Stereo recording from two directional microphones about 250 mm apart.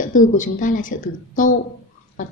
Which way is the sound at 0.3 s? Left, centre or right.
Left.